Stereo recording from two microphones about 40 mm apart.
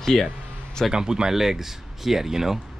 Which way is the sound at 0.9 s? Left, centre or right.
Centre.